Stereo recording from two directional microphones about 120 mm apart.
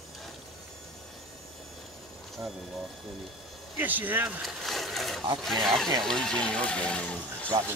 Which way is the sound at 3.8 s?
15° right (ahead or behind).